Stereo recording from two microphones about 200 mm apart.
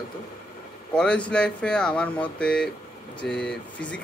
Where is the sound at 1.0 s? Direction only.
5° left (ahead or behind).